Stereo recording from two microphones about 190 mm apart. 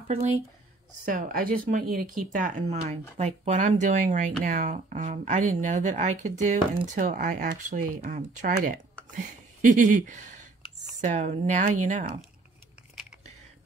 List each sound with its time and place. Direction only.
1.0 s speech: 45° right (ahead or behind)